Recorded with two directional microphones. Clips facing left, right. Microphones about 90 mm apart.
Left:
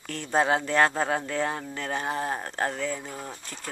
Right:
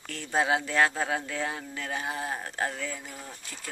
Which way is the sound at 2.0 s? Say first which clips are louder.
Left 5 dB; 45° left (ahead or behind).